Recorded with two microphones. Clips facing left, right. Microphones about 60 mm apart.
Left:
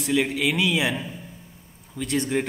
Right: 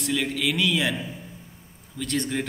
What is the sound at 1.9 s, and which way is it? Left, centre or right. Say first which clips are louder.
Speech: left 3 dB; centre.